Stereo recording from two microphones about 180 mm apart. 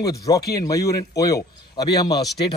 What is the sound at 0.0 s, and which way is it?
A man's voice, 20° left (ahead or behind).